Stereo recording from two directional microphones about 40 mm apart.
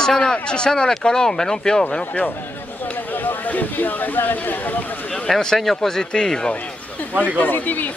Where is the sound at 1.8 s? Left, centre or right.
Left.